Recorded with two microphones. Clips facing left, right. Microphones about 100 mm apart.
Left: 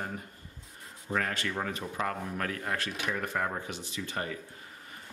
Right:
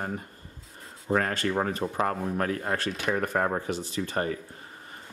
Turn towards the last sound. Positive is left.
turn(degrees=-40)  # may be behind; listen again after turning